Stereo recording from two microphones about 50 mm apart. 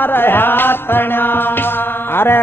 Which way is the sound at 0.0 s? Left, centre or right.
Left.